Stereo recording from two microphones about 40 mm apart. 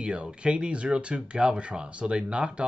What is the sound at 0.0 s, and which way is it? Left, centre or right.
Speech, right.